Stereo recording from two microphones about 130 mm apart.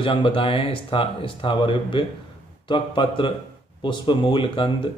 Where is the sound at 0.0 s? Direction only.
40° left (ahead or behind).